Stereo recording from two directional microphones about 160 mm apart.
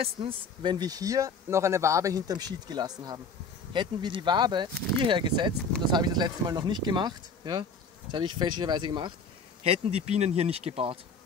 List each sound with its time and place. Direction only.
0.0 s speech: 35° right (ahead or behind)
9.6 s speech: 40° right (ahead or behind)